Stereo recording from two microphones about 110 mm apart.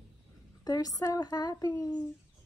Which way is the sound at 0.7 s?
35° left (ahead or behind).